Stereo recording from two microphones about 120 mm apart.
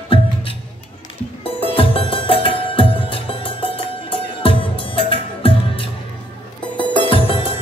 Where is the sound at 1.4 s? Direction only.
50° left (ahead or behind).